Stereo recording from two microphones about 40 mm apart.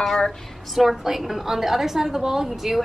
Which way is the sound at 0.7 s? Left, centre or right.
Centre.